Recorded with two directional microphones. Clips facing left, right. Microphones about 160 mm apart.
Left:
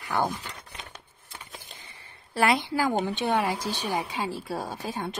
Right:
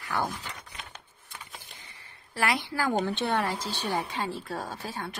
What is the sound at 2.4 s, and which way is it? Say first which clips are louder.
A woman's voice: left 4 dB; 25° left (ahead or behind).